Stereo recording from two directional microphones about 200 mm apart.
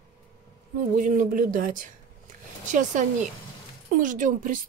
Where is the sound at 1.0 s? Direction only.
40° right (ahead or behind).